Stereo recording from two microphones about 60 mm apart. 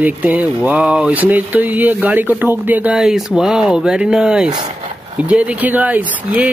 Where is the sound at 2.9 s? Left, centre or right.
Centre.